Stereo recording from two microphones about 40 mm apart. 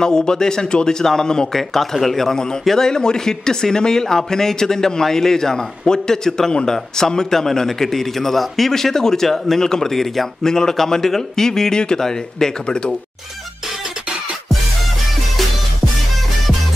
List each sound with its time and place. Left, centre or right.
0.0 s a man's voice: centre
1.6 s a man's voice: centre; by 12.9 s left